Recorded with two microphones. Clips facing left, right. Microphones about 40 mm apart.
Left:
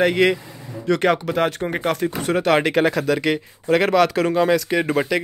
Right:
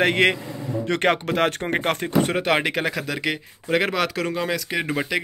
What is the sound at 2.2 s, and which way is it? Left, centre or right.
Speech, centre.